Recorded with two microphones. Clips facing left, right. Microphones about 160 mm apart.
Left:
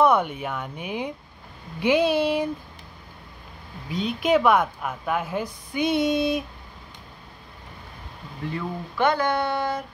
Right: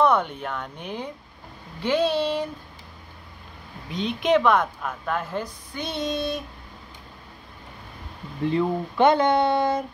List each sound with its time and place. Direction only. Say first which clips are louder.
0.0 s a woman's voice: left 1 dB; 10° left (ahead or behind)
3.9 s a woman's voice: even; 5° left (ahead or behind)
8.5 s speech: right 8 dB; 25° right (ahead or behind)